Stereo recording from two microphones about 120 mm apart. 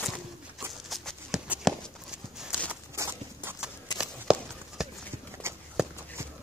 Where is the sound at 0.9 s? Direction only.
Centre (ahead or behind).